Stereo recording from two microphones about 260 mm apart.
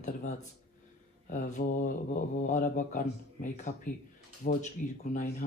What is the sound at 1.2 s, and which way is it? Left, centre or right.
Mantra, left.